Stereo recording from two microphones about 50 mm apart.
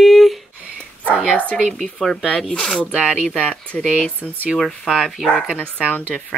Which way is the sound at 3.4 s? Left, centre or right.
Left.